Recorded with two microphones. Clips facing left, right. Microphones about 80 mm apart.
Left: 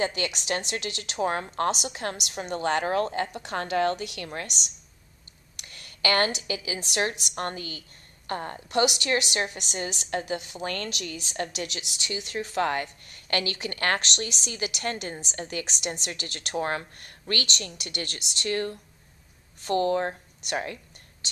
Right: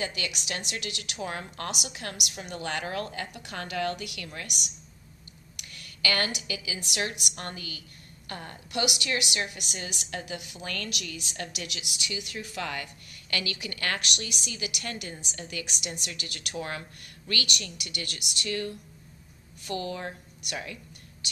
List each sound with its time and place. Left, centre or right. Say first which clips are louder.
0.0 s a woman's voice: left 6 dB; left
5.6 s a woman's voice: left 3 dB; left
13.9 s a woman's voice: left 4 dB; left